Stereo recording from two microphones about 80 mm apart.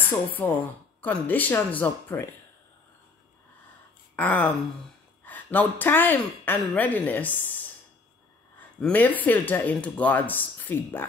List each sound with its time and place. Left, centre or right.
0.4 s speech: left
4.2 s speech: centre
8.5 s speech: centre